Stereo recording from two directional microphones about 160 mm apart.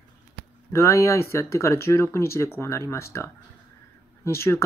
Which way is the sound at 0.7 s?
20° left (ahead or behind).